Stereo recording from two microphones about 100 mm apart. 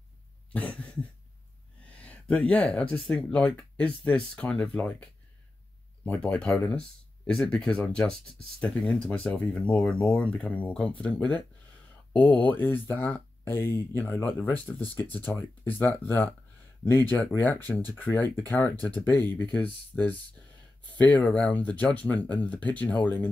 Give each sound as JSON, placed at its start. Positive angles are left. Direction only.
{"t": 0.5, "sound": "a sound", "side_deg": 10}
{"t": 2.0, "sound": "speech", "side_deg": 10}
{"t": 6.0, "sound": "speech", "side_deg": 15}